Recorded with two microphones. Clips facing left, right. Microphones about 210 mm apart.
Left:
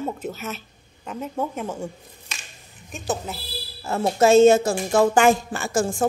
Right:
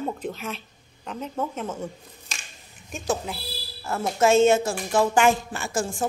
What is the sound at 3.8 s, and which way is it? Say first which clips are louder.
A woman's voice: left 3 dB; 30° left (ahead or behind).